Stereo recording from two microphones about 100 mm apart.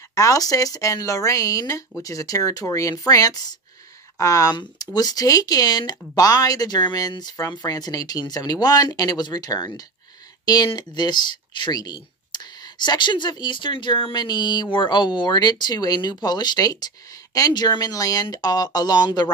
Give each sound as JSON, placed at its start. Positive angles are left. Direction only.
{"t": 0.1, "sound": "speech", "side_deg": 35}